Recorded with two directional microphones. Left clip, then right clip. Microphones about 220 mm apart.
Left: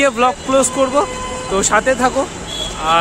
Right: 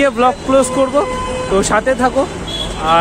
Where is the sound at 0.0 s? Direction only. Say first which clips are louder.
Right 1 dB; 5° left (ahead or behind).